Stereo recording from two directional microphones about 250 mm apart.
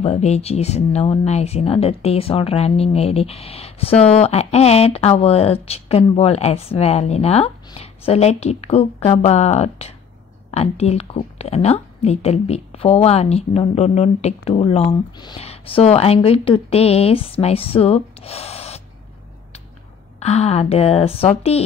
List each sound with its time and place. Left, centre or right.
0.0 s a woman's voice: left
20.2 s a woman's voice: left